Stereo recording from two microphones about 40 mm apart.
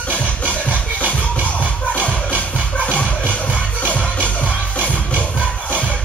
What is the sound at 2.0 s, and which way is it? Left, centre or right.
Music, right.